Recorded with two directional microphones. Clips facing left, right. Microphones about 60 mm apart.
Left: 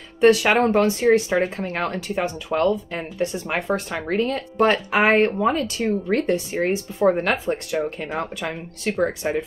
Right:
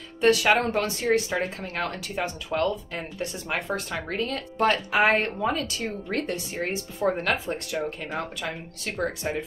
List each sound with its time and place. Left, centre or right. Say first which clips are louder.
0.2 s speech: left 5 dB; left
8.4 s speech: left 4 dB; left
9.0 s speech: left 5 dB; left